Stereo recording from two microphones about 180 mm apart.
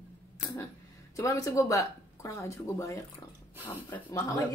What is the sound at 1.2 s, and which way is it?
Speech, 15° left (ahead or behind).